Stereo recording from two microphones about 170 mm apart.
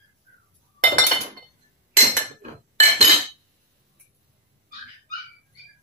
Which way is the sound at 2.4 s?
40° right (ahead or behind).